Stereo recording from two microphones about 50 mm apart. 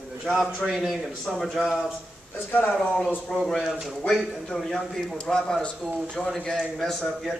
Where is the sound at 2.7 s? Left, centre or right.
Centre.